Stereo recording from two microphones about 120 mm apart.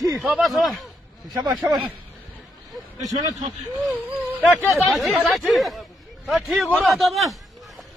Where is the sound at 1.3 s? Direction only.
35° right (ahead or behind).